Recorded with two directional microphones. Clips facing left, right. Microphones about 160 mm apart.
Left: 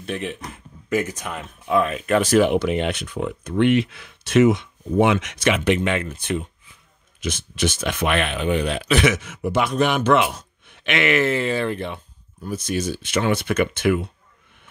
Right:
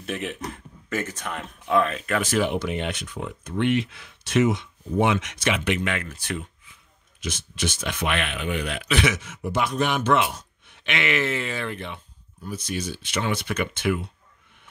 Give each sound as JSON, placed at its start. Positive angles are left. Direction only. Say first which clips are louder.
{"t": 0.0, "sound": "speech", "louder": "left 2 dB", "side_deg": 0}
{"t": 0.8, "sound": "speech", "louder": "left 6 dB", "side_deg": 15}
{"t": 2.4, "sound": "speech", "louder": "left 6 dB", "side_deg": 75}
{"t": 5.6, "sound": "speech", "louder": "left 6 dB", "side_deg": 30}
{"t": 7.2, "sound": "speech", "louder": "left 5 dB", "side_deg": 55}
{"t": 8.2, "sound": "speech", "louder": "left 6 dB", "side_deg": 35}
{"t": 8.9, "sound": "speech", "louder": "left 4 dB", "side_deg": 50}
{"t": 10.8, "sound": "speech", "louder": "left 5 dB", "side_deg": 55}
{"t": 12.4, "sound": "speech", "louder": "left 6 dB", "side_deg": 45}